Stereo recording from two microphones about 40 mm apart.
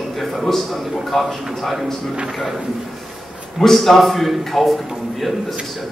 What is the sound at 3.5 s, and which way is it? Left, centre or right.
A man's voice, centre.